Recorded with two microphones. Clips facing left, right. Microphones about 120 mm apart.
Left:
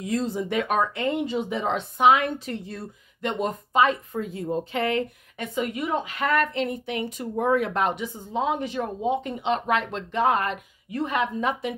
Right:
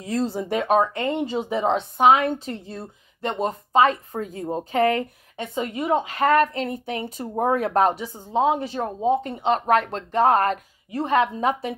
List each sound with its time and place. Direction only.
0.0 s a woman's voice: 35° right (ahead or behind)
5.4 s a woman's voice: 30° right (ahead or behind)